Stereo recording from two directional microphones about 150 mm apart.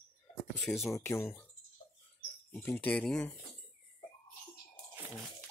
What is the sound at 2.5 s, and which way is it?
Speech, 10° left (ahead or behind).